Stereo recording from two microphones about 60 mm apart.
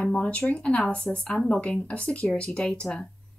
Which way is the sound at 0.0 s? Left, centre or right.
Left.